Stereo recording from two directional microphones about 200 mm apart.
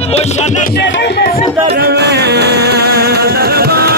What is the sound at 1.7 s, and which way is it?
Music, 55° right (ahead or behind).